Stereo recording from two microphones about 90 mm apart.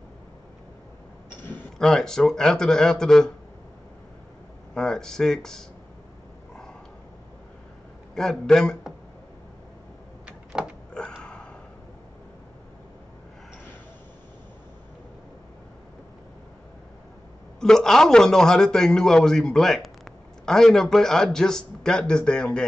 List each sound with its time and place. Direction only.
1.3 s a sound: 20° left (ahead or behind)
1.8 s a man's voice: 5° left (ahead or behind)
4.7 s a man's voice: 5° left (ahead or behind)
8.1 s a man's voice: 5° left (ahead or behind)
10.2 s door: 10° right (ahead or behind)
10.9 s a sound: 10° left (ahead or behind)
17.6 s a man's voice: 5° left (ahead or behind)